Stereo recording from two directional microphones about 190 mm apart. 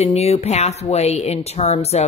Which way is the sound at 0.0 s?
35° left (ahead or behind).